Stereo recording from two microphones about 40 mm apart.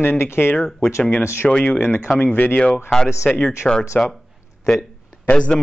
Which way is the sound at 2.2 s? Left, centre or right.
Left.